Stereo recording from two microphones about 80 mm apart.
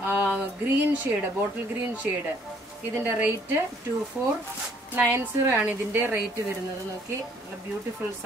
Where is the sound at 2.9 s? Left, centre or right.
Right.